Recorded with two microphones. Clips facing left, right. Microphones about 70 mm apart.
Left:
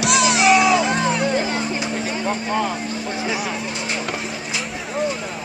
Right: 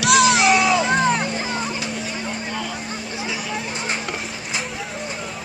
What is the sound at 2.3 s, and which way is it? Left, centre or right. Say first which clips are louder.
Vehicle: left 6 dB; left.